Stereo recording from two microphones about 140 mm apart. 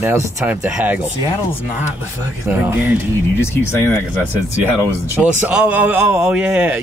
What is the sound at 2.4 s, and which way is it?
Speech, 10° right (ahead or behind).